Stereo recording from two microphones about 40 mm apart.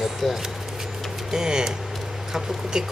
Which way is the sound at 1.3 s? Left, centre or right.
Centre.